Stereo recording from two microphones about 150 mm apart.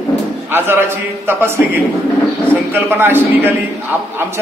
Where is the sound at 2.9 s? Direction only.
15° right (ahead or behind).